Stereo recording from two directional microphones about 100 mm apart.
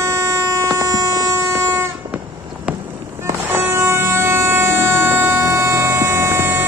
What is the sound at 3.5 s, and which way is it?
Vehicle, 25° right (ahead or behind).